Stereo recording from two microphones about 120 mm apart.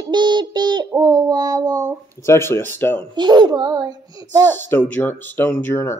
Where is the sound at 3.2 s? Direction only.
40° right (ahead or behind).